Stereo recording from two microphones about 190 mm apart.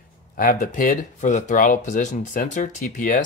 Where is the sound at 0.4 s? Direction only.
45° left (ahead or behind).